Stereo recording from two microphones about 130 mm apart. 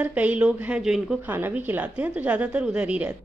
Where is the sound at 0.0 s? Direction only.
10° right (ahead or behind).